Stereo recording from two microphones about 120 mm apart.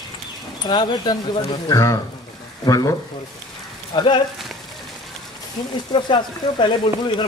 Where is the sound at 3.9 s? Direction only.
40° left (ahead or behind).